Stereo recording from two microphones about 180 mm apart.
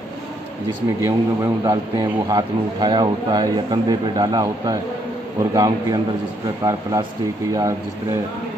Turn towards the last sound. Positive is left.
turn(degrees=-20)  # may be behind; listen again after turning